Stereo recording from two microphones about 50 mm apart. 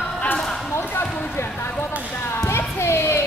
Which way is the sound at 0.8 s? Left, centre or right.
Left.